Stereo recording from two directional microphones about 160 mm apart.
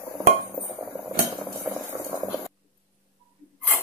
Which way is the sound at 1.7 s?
10° right (ahead or behind).